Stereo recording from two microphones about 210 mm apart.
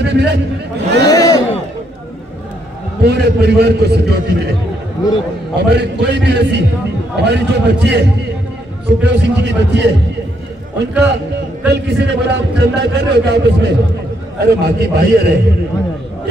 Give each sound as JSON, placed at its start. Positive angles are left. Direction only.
{"t": 0.0, "sound": "a man's voice", "side_deg": -55}
{"t": 1.0, "sound": "a sound", "side_deg": 15}
{"t": 3.0, "sound": "a man's voice", "side_deg": -50}
{"t": 5.6, "sound": "a man's voice", "side_deg": -55}